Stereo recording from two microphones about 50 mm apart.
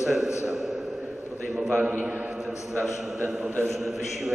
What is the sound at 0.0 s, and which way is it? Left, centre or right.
Speech, centre.